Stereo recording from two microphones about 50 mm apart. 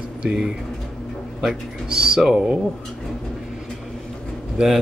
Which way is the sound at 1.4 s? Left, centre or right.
Centre.